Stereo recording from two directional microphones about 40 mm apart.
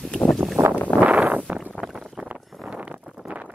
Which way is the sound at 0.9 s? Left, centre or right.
Right.